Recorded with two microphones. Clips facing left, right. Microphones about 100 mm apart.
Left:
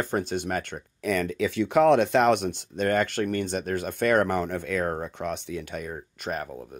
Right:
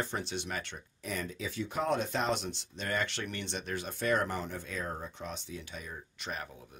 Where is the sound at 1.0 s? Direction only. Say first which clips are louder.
Left 13 dB; 75° left (ahead or behind).